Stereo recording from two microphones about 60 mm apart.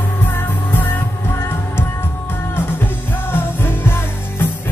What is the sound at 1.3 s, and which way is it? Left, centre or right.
Music, left.